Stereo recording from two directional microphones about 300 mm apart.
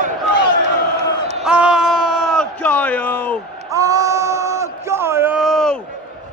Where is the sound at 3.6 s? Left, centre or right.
Centre.